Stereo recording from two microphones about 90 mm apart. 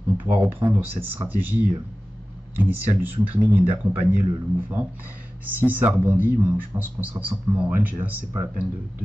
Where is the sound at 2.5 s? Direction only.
20° right (ahead or behind).